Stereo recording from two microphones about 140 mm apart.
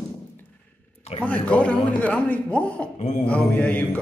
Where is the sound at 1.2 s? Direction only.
10° left (ahead or behind).